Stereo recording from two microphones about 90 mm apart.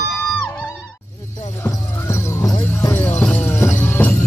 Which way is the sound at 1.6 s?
30° left (ahead or behind).